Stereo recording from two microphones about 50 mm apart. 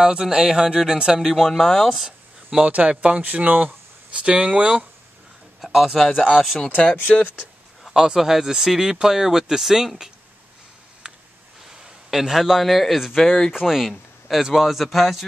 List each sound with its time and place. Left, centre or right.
0.0 s speech: centre
1.2 s a man's voice: centre
2.6 s speech: right
5.6 s a man's voice: centre
7.0 s speech: left
7.9 s speech: centre
11.8 s a man's voice: centre
13.5 s a man's voice: centre